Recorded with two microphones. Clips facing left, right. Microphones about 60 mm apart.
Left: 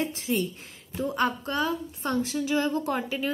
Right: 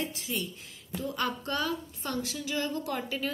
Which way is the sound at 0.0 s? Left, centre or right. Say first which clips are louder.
Left 7 dB; left.